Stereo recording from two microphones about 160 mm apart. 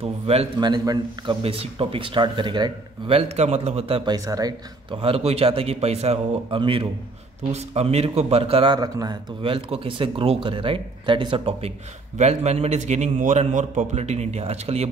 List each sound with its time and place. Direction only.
0.0 s a man's voice: 40° right (ahead or behind)
1.4 s a man's voice: 35° right (ahead or behind)